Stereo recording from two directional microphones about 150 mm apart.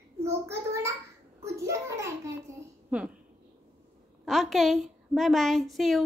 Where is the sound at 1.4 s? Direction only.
20° right (ahead or behind).